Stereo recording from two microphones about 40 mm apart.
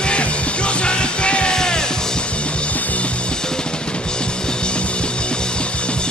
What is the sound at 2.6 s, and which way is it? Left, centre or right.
Music, left.